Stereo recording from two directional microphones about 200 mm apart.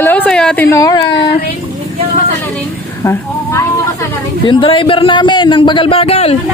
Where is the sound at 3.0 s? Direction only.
10° left (ahead or behind).